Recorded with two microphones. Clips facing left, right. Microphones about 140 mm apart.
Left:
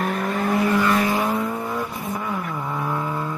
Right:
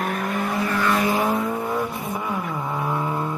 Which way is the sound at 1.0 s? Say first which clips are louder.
Right 1 dB; 20° right (ahead or behind).